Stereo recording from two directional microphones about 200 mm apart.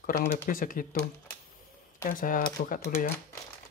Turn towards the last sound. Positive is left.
turn(degrees=45)  # may be behind; listen again after turning